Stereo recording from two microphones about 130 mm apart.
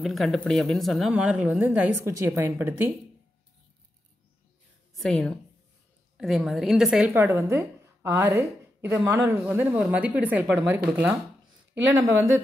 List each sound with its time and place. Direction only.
0.0 s speech: centre (ahead or behind); by 2.9 s 20° right (ahead or behind)
4.9 s a woman's voice: 5° left (ahead or behind)
7.2 s a woman's voice: 20° right (ahead or behind)